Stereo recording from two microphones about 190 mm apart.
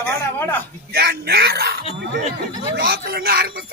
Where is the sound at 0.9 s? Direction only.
55° right (ahead or behind).